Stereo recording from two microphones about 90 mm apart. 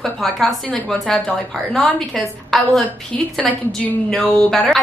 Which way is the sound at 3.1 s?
15° left (ahead or behind).